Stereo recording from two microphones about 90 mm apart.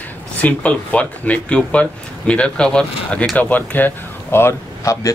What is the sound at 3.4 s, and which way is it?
Speech, 20° left (ahead or behind).